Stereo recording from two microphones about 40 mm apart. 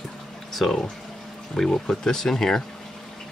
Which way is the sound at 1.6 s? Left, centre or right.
Centre.